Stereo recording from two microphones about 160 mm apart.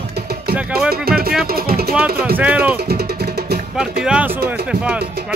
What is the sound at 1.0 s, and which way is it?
Music, 70° right (ahead or behind).